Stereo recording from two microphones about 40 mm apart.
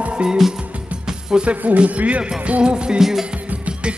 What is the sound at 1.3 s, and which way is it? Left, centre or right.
Music, centre.